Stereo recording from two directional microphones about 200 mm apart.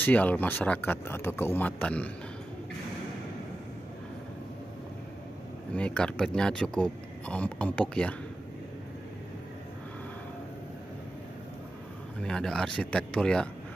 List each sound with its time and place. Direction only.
0.0 s speech: 10° left (ahead or behind)
5.8 s a man's voice: 5° left (ahead or behind)
12.2 s a man's voice: 5° left (ahead or behind)